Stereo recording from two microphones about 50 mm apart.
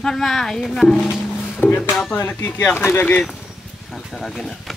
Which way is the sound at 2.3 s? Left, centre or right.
Left.